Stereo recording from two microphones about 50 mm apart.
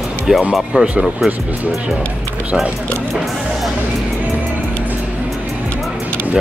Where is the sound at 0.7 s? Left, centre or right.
Right.